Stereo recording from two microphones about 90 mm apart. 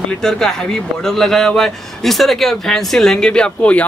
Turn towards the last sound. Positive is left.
turn(degrees=15)  # may be behind; listen again after turning